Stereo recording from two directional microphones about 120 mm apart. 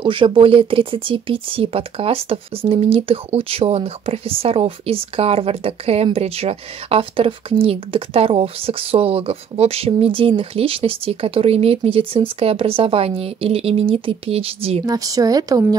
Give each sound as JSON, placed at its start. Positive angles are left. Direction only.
{"t": 0.0, "sound": "speech", "side_deg": -45}
{"t": 14.9, "sound": "a woman's voice", "side_deg": -30}